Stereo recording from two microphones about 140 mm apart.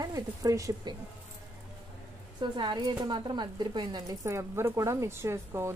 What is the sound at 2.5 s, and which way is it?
Speech, 35° right (ahead or behind).